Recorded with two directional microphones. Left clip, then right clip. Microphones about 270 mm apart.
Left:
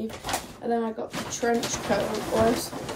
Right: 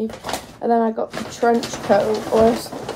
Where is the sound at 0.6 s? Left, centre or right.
Centre.